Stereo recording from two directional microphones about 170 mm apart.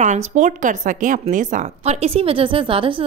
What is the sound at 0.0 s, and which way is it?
Speech, 45° right (ahead or behind).